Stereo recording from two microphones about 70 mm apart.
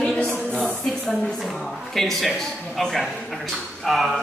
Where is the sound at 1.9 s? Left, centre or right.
Centre.